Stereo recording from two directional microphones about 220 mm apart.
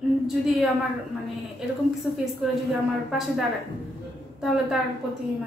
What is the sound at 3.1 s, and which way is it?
Speech, centre (ahead or behind).